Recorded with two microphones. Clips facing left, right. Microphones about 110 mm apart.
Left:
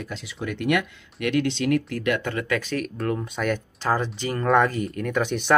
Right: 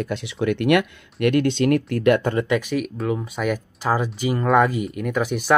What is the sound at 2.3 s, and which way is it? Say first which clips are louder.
Speech: right 5 dB; 20° right (ahead or behind).